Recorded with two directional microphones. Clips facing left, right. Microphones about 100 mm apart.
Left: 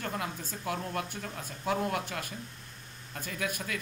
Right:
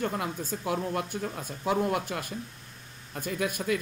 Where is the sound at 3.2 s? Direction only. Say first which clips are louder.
Right 6 dB; 20° right (ahead or behind).